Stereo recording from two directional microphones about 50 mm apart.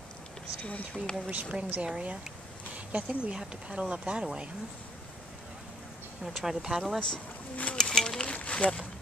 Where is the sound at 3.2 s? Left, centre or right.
Centre.